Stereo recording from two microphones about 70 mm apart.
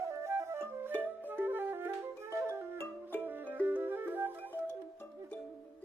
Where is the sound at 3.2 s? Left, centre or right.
Right.